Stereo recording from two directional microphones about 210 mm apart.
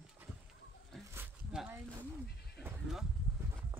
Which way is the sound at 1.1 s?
5° right (ahead or behind).